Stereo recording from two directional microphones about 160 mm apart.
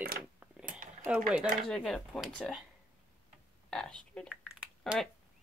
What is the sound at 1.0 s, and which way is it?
Speech, 5° right (ahead or behind).